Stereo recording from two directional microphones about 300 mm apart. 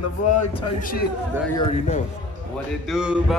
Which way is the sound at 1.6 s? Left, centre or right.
Left.